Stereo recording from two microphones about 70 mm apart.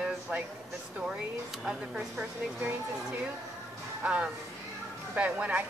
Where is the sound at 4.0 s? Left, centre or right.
Centre.